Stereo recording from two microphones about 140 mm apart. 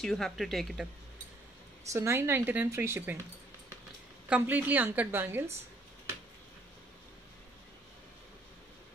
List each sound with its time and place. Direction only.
0.0 s speech: 5° left (ahead or behind)
1.9 s speech: 20° right (ahead or behind)
4.3 s speech: 10° right (ahead or behind)